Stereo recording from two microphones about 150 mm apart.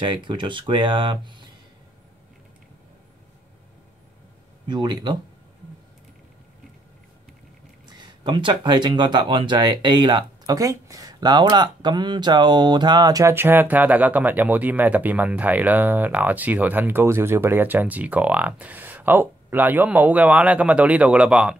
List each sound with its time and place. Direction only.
0.0 s speech: 30° right (ahead or behind)
4.6 s speech: 30° right (ahead or behind)
7.9 s speech: 30° right (ahead or behind); by 21.5 s 5° right (ahead or behind)